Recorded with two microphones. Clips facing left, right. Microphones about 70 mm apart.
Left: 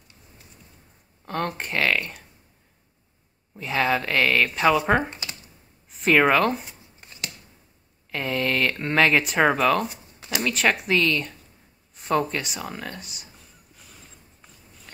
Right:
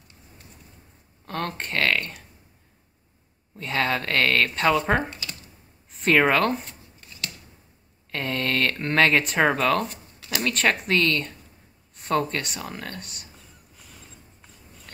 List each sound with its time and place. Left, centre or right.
1.2 s speech: centre
3.5 s speech: centre
7.0 s a sound: left
8.1 s speech: centre